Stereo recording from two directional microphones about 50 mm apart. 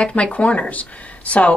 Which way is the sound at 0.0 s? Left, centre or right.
Left.